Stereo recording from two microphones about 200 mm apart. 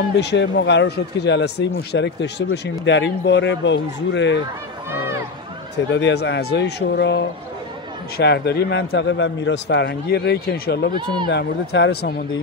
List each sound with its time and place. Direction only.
0.1 s speech: 60° left (ahead or behind)
5.9 s speech: 60° left (ahead or behind)